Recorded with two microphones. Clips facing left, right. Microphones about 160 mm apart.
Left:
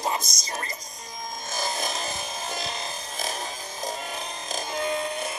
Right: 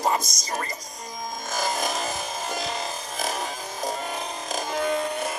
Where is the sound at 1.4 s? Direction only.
50° right (ahead or behind).